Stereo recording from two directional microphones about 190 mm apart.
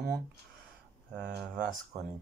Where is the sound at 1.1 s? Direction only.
50° right (ahead or behind).